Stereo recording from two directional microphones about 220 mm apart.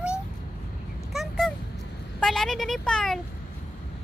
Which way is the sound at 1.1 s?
Centre (ahead or behind).